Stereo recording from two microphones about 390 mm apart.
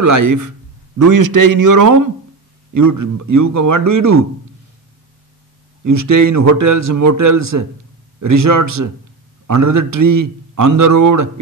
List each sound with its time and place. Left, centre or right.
0.0 s speech: right
5.9 s speech: right